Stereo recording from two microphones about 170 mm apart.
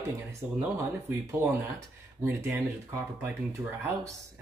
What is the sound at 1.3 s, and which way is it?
Speech, 15° right (ahead or behind).